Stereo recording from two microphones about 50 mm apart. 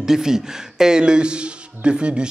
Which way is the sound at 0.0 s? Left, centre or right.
Centre.